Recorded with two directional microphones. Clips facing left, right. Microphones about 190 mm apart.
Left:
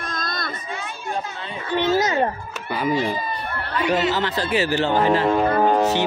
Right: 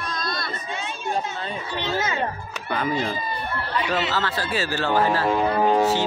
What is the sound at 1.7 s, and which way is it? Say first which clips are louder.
Speech: left 8 dB; 45° left (ahead or behind).